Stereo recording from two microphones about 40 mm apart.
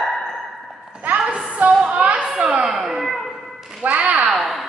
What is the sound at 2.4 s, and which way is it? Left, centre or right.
Speech, right.